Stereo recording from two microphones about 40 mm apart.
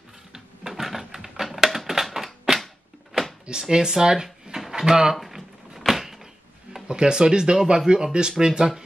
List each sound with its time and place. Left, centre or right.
0.3 s a sound: centre
1.4 s typewriter: centre
3.7 s speech: centre
4.6 s drawer open or close: centre
5.1 s a sound: centre
6.9 s speech: centre